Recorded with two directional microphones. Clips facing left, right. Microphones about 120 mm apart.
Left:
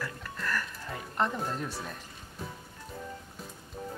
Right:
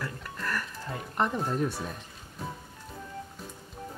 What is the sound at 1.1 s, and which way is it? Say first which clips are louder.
Speech: right 3 dB; 5° right (ahead or behind).